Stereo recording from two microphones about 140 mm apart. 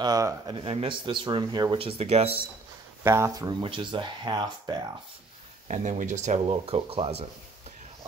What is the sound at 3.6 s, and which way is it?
A man's voice, 35° right (ahead or behind).